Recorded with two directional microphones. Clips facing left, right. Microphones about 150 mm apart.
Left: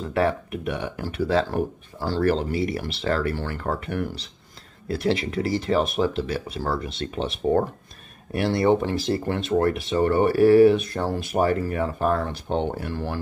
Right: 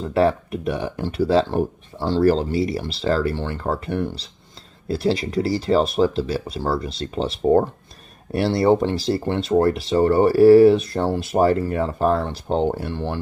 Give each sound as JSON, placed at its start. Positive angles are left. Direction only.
{"t": 0.1, "sound": "speech", "side_deg": -30}